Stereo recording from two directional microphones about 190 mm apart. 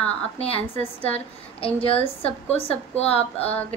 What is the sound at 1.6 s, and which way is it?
A woman's voice, 30° left (ahead or behind).